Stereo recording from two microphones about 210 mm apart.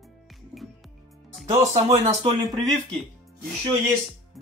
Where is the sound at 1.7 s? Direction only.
30° right (ahead or behind).